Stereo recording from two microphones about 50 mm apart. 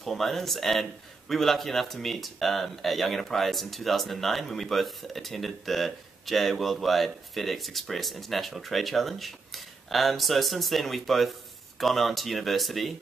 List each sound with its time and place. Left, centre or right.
0.0 s speech: centre